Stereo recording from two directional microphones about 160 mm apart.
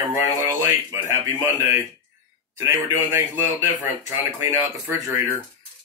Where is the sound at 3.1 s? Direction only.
15° right (ahead or behind).